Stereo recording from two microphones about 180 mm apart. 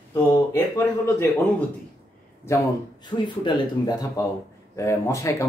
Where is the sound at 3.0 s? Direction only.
25° left (ahead or behind).